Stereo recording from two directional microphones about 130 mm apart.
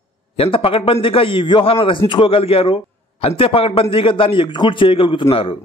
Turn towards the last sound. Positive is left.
turn(degrees=45)  # may be behind; listen again after turning